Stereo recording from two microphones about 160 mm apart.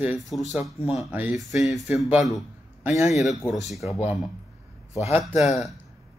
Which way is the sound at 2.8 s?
20° right (ahead or behind).